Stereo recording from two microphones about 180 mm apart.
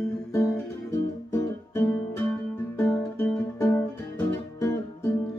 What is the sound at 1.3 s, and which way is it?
Music, 15° left (ahead or behind).